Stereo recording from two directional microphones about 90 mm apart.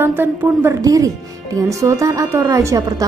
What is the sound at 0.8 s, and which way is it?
A woman's voice, 40° right (ahead or behind).